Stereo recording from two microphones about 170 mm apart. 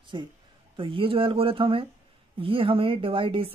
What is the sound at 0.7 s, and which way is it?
A man's voice, 30° right (ahead or behind).